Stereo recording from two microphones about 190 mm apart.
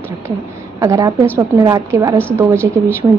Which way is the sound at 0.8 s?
15° right (ahead or behind).